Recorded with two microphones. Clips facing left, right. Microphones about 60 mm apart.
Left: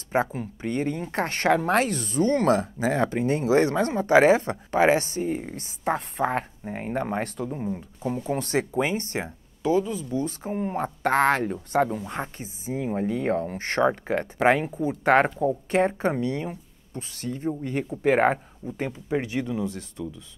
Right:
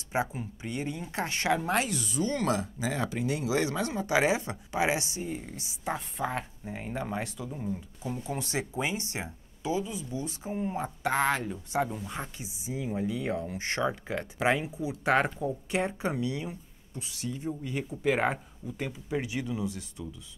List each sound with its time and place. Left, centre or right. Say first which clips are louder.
0.1 s speech: left 6 dB; left
7.5 s speech: left 5 dB; left
8.2 s speech: left 8 dB; left